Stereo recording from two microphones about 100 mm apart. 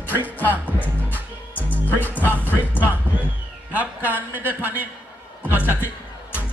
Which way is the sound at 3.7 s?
15° right (ahead or behind).